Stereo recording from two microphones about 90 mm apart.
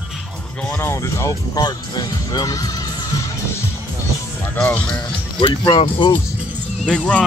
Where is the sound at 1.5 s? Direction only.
45° left (ahead or behind).